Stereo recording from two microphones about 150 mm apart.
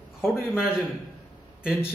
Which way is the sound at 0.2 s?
Centre (ahead or behind).